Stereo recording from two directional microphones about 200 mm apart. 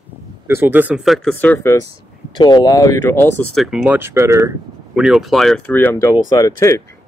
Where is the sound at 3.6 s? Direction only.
5° right (ahead or behind).